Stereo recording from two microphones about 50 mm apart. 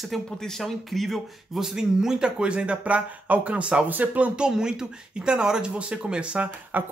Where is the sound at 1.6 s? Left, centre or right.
Centre; by 4.3 s right.